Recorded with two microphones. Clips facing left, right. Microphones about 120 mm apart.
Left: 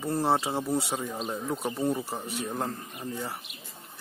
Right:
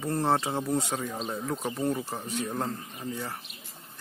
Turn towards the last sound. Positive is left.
turn(degrees=10)  # may be behind; listen again after turning